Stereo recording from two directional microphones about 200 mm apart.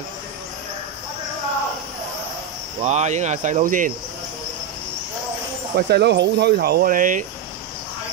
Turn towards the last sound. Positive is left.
turn(degrees=-45)  # may be behind; listen again after turning